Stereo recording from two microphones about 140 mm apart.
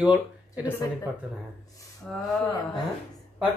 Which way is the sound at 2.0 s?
Centre (ahead or behind).